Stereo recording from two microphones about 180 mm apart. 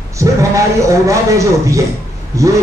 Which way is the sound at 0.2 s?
15° right (ahead or behind).